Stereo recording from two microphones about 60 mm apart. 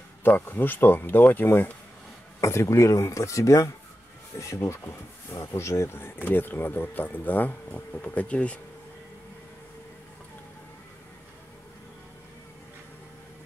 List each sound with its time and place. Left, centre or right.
0.2 s speech: left
2.4 s speech: left
5.9 s speech: left